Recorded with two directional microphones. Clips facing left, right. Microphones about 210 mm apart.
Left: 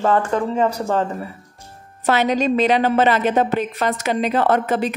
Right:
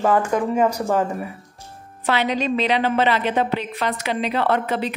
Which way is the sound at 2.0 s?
45° left (ahead or behind).